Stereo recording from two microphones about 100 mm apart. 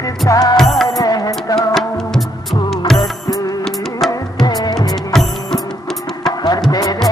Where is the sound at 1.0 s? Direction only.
40° left (ahead or behind).